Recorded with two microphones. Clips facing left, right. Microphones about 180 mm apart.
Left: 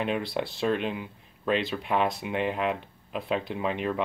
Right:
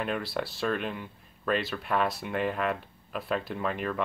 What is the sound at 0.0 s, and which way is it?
Speech, 20° left (ahead or behind).